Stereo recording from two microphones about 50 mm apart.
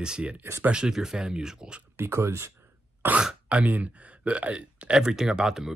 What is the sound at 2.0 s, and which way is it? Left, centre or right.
Speech, right.